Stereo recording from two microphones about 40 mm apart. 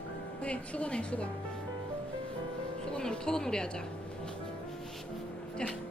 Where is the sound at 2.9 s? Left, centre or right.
Left.